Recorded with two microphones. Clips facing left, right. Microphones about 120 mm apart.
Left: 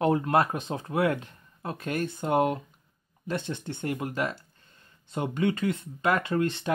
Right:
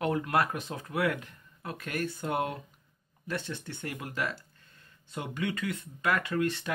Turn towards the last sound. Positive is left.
turn(degrees=25)  # may be behind; listen again after turning